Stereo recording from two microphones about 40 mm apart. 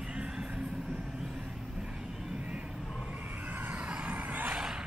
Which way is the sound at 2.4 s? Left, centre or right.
Right.